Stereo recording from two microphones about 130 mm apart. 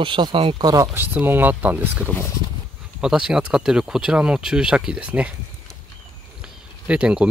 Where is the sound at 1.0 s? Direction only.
15° right (ahead or behind).